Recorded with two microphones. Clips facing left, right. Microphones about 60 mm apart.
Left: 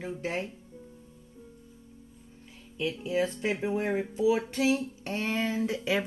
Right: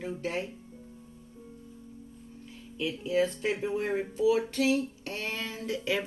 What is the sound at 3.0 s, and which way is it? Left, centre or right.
Speech, centre.